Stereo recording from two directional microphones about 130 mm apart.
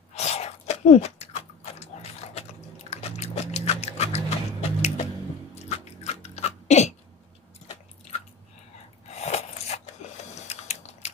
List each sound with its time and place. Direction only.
0.1 s a sound: 55° left (ahead or behind)
2.9 s music: 55° left (ahead or behind)
5.7 s biting: 60° left (ahead or behind)
9.1 s a sound: 55° left (ahead or behind)
10.0 s printer: 60° left (ahead or behind)
10.4 s squish: 60° left (ahead or behind)